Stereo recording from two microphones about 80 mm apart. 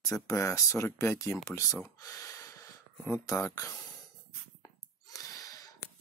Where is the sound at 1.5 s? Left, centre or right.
Left.